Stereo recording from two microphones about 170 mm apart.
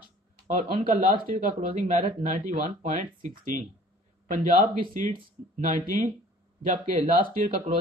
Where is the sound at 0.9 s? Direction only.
60° right (ahead or behind).